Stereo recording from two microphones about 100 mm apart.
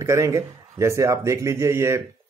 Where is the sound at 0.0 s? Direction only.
30° right (ahead or behind).